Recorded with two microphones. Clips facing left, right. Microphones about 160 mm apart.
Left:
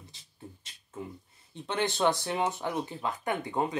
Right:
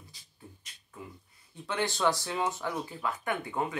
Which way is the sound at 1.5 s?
20° left (ahead or behind).